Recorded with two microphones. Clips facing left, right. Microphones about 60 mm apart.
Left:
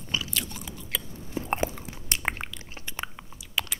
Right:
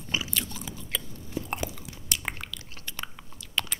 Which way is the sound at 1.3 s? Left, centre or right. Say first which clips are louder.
Left 4 dB; left.